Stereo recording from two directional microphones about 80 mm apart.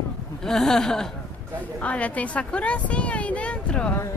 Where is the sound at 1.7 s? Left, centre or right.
Centre.